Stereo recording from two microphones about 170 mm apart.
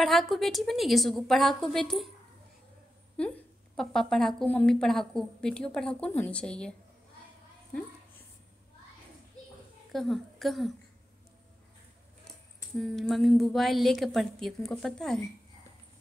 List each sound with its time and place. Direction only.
0.0 s a woman's voice: centre (ahead or behind)
3.2 s a woman's voice: 5° left (ahead or behind)
9.9 s a woman's voice: centre (ahead or behind)
12.7 s a woman's voice: 5° left (ahead or behind)